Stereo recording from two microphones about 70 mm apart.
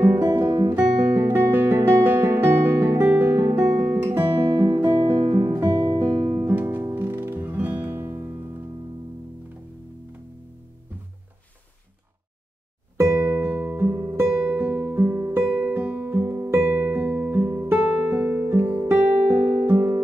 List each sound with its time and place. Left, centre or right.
0.3 s guitar: right
3.7 s guitar: centre
4.0 s music: right
5.5 s music: right
5.8 s music: right
6.5 s music: right
7.9 s music: right
13.0 s music: right
13.4 s music: right
14.2 s music: centre
14.6 s music: right
15.5 s guitar: centre
16.5 s music: right
17.7 s music: centre; by 20.0 s right